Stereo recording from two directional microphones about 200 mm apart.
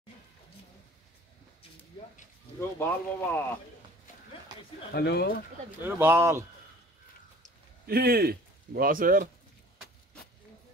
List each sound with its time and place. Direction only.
2.8 s speech: 10° left (ahead or behind)
4.9 s speech: 55° left (ahead or behind)
5.8 s speech: 10° right (ahead or behind)
7.8 s a man's voice: 50° right (ahead or behind)